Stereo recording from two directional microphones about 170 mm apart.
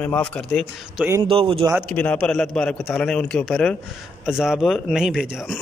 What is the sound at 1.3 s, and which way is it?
Speech, 35° right (ahead or behind).